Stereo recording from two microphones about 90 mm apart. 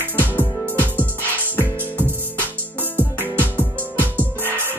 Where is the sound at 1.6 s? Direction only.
20° right (ahead or behind).